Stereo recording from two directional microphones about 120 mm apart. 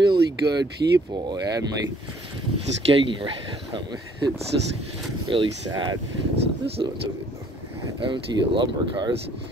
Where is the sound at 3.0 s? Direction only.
40° right (ahead or behind).